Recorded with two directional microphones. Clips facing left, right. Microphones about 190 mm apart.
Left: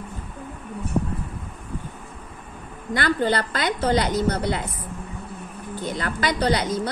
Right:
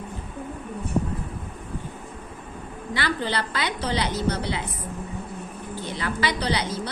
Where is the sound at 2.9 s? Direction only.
50° left (ahead or behind).